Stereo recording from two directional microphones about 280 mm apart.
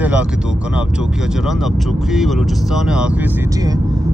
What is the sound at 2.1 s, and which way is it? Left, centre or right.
Speech, centre.